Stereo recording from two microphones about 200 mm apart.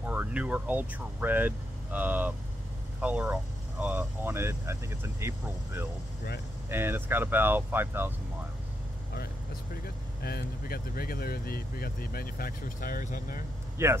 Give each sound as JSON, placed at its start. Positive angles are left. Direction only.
{"t": 0.0, "sound": "speech", "side_deg": -10}
{"t": 6.7, "sound": "speech", "side_deg": -10}
{"t": 9.8, "sound": "speech", "side_deg": 50}
{"t": 13.8, "sound": "speech", "side_deg": -15}